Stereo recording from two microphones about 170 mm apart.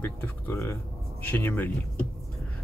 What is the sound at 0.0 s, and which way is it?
Speech, 15° left (ahead or behind).